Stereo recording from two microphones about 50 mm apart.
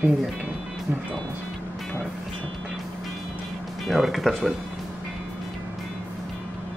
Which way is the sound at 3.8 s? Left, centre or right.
Centre.